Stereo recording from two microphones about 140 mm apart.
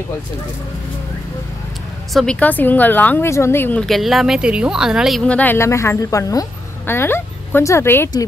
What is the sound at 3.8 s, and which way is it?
Speech, centre (ahead or behind).